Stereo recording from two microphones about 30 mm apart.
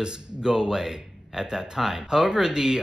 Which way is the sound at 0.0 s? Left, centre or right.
Right.